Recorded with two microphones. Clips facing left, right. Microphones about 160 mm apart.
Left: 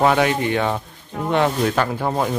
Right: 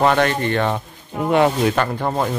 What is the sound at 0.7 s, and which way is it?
Speech, 5° right (ahead or behind).